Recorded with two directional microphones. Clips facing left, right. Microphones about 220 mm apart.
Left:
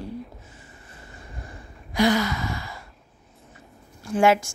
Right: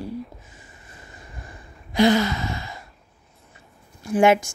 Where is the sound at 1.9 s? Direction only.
25° right (ahead or behind).